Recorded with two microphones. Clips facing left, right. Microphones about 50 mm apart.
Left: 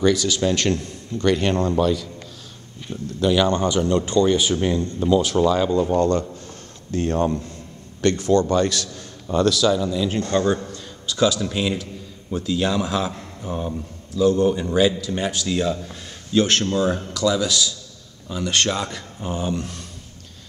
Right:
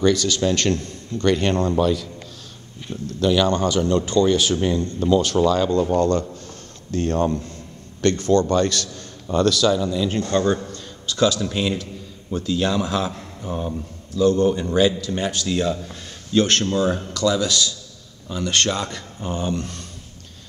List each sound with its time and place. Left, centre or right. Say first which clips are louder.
0.0 s speech: even; centre
2.9 s speech: even; centre
5.9 s a man's voice: even; left